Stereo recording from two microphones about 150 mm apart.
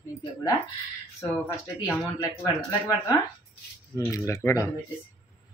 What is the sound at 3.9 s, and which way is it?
Speech, 20° left (ahead or behind).